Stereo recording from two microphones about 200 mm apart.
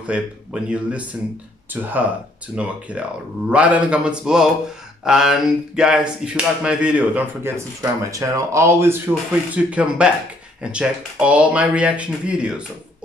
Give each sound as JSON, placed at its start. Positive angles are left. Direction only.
{"t": 0.0, "sound": "speech", "side_deg": -5}